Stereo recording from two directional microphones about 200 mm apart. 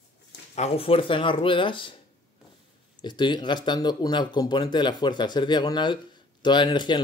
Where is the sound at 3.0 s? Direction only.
20° left (ahead or behind).